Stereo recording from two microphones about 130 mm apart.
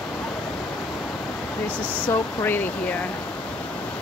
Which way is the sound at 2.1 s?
15° left (ahead or behind).